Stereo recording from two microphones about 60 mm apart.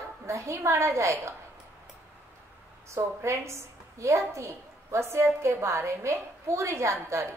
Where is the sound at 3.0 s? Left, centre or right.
Right.